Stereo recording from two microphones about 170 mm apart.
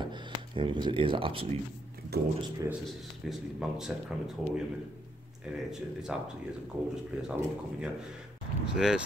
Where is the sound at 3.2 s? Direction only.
5° right (ahead or behind).